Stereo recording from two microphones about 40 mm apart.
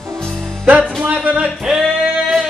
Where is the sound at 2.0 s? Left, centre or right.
Centre.